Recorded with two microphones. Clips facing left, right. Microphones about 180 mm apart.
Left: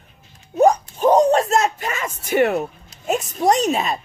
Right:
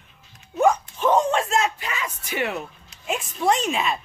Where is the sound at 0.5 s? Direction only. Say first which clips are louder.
Left 4 dB; 40° left (ahead or behind).